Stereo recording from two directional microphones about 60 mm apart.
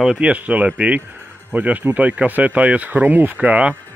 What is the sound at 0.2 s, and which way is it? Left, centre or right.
Speech, right.